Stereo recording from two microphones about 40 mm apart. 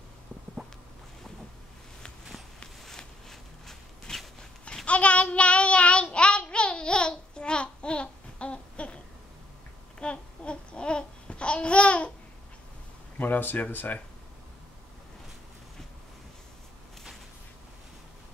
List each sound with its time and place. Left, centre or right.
2.8 s a sound: centre
4.8 s child singing: left
6.1 s babbling: left
13.2 s speech: left